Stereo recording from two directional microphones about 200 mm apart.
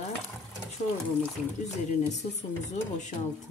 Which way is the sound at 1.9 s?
35° left (ahead or behind).